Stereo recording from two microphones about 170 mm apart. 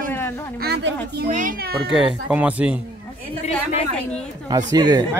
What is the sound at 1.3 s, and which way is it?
Speech, 55° right (ahead or behind).